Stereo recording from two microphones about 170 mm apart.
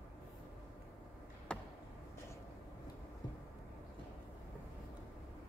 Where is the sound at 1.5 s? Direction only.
5° left (ahead or behind).